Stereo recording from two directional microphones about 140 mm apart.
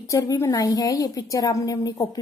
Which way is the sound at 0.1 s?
20° left (ahead or behind).